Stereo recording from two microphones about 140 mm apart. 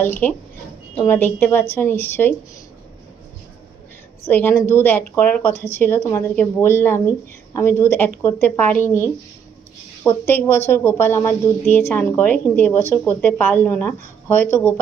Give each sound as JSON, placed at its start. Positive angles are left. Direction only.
{"t": 0.0, "sound": "a woman's voice", "side_deg": 15}
{"t": 4.3, "sound": "a woman's voice", "side_deg": 15}